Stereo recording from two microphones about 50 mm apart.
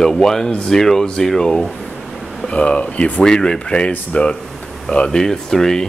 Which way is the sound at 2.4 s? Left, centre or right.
Left.